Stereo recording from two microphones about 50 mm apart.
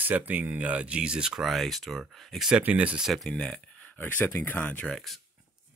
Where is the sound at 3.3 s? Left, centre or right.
Centre.